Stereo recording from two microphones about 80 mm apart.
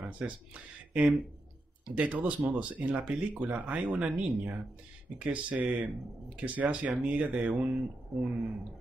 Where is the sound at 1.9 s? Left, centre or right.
Centre.